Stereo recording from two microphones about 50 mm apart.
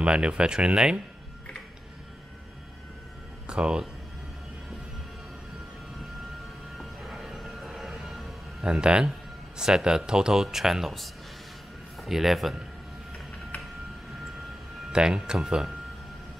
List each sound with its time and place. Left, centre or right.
0.0 s speech: centre
3.4 s speech: centre
6.8 s music: centre
8.7 s speech: centre
14.9 s speech: centre